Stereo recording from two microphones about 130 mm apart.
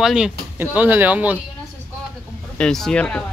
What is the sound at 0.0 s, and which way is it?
Speech, 5° right (ahead or behind).